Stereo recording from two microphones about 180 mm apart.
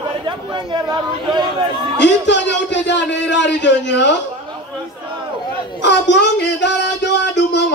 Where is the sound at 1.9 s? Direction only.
80° left.